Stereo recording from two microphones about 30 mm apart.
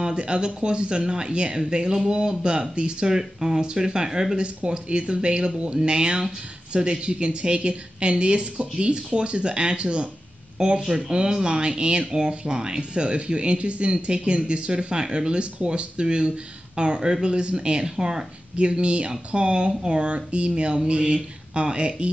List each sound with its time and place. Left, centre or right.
0.0 s speech: right
3.2 s speech: centre
4.6 s speech: right
18.6 s speech: right